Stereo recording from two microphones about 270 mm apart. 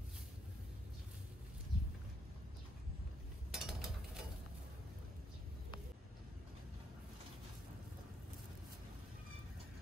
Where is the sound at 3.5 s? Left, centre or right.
Centre.